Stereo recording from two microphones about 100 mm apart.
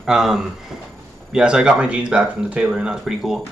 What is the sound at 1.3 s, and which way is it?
Speech, 10° right (ahead or behind).